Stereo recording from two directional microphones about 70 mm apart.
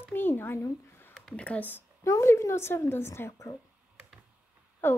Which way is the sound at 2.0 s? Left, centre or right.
Left.